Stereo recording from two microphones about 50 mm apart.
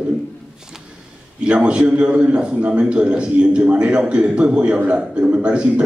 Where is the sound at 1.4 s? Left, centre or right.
Right.